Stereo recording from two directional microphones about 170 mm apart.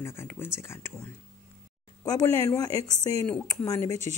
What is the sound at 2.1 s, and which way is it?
Speech, 20° left (ahead or behind).